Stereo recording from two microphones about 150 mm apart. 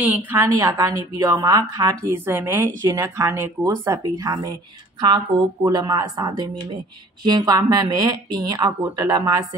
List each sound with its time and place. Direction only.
0.0 s a woman's voice: 10° right (ahead or behind)